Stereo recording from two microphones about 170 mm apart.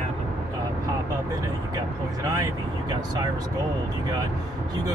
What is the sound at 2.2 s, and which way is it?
Speech, 20° right (ahead or behind).